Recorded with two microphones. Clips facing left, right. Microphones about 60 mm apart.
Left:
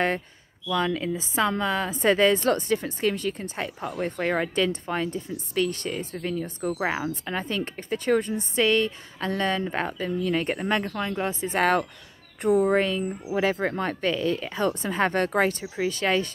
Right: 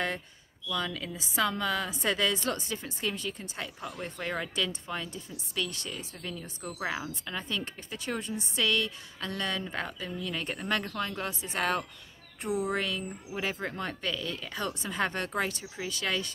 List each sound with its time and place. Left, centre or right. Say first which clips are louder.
0.7 s a woman's voice: left 9 dB; left
10.7 s speech: left 5 dB; left
12.7 s a woman's voice: left 9 dB; left
13.3 s a woman's voice: left 10 dB; left